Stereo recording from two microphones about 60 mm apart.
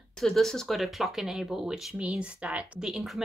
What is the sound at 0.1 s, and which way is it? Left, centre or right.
Speech, centre.